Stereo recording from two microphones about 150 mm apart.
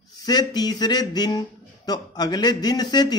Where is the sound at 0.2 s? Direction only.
30° left (ahead or behind).